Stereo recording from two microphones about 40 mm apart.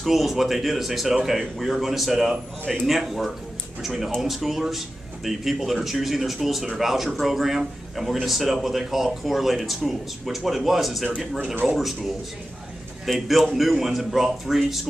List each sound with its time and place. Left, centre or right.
0.0 s speech: centre
2.6 s speech: left
2.9 s speech: centre
11.1 s speech: right
11.6 s speech: centre
13.1 s speech: centre